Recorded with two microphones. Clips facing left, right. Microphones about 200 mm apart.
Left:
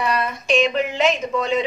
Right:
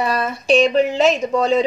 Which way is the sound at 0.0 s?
35° right (ahead or behind).